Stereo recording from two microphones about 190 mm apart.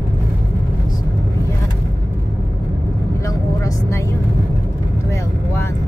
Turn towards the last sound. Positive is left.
turn(degrees=15)  # may be behind; listen again after turning